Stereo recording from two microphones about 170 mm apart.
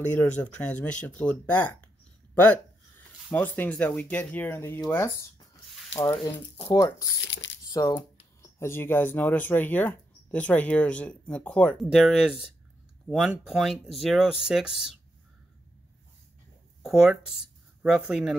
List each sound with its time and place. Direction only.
0.0 s speech: 10° left (ahead or behind)
3.0 s speech: 10° left (ahead or behind)
6.6 s speech: 20° left (ahead or behind); by 14.9 s 5° right (ahead or behind)
16.8 s speech: centre (ahead or behind)